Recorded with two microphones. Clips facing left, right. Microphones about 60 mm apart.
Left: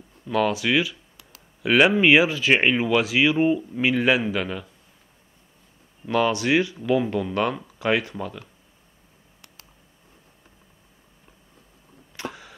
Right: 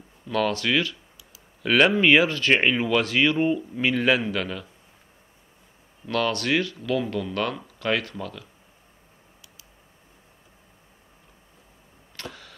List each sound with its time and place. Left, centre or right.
0.3 s speech: centre
6.0 s speech: centre
12.2 s a sound: centre